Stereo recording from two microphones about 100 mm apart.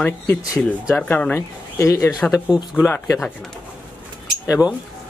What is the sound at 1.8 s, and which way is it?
Speech, 30° left (ahead or behind).